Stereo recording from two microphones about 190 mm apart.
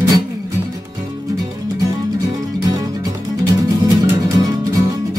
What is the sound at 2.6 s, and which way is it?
Music, 20° right (ahead or behind).